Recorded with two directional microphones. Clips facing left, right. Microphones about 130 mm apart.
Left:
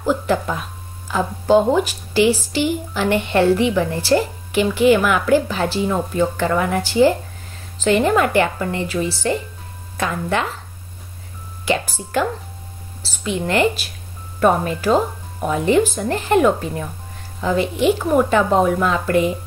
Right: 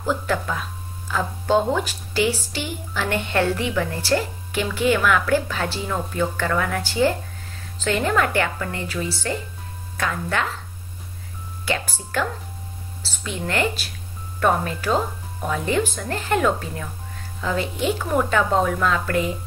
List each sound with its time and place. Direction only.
0.0 s a woman's voice: 15° left (ahead or behind)
3.3 s a woman's voice: 25° left (ahead or behind)
11.7 s a woman's voice: 15° left (ahead or behind)